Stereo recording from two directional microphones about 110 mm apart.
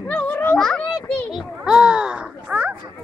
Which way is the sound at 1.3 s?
5° right (ahead or behind).